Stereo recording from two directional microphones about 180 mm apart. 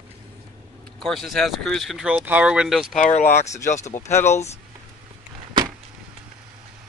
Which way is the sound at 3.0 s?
40° left (ahead or behind).